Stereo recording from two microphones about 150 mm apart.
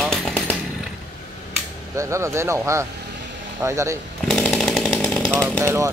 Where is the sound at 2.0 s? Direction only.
20° right (ahead or behind).